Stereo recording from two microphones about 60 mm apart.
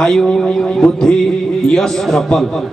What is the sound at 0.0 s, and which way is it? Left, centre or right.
A man's voice, centre.